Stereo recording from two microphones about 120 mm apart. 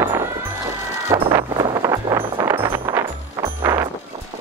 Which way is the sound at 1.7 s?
40° right (ahead or behind).